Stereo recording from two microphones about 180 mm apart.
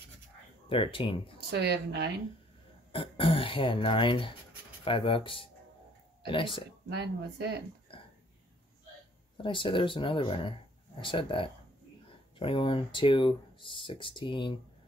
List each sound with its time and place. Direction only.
0.7 s speech: 30° left (ahead or behind)
1.5 s speech: 70° right (ahead or behind)
2.9 s speech: 30° left (ahead or behind)
7.0 s speech: 65° right (ahead or behind)
9.4 s speech: 30° left (ahead or behind)